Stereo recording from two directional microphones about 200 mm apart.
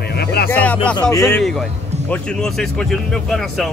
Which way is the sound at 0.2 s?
50° left (ahead or behind).